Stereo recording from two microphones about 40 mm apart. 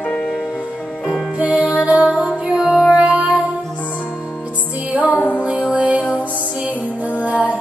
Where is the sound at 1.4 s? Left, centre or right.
Right.